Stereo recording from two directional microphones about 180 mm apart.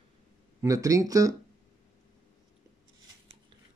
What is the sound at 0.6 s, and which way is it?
Speech, 20° right (ahead or behind).